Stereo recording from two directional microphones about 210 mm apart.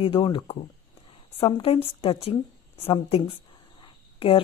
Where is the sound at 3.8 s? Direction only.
25° left (ahead or behind).